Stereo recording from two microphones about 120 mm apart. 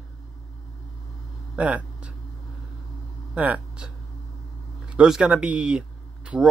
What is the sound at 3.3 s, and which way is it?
Speech, 10° right (ahead or behind).